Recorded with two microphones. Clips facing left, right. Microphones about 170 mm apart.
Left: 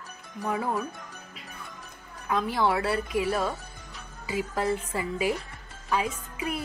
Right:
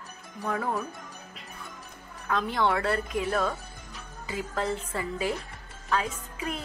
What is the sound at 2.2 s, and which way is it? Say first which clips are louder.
A woman's voice: left 1 dB; 10° left (ahead or behind).